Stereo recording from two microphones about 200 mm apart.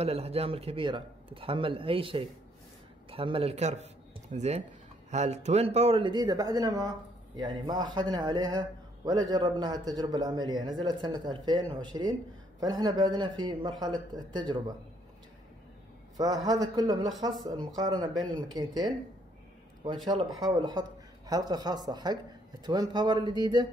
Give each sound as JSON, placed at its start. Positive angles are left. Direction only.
{"t": 0.0, "sound": "a man's voice", "side_deg": -30}
{"t": 16.4, "sound": "a man's voice", "side_deg": -20}
{"t": 20.3, "sound": "a man's voice", "side_deg": -20}